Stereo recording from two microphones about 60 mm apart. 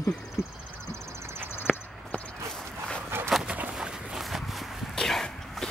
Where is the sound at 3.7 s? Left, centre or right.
Centre.